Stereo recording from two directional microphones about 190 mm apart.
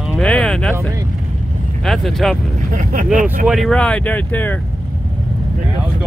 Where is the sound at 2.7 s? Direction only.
40° right (ahead or behind).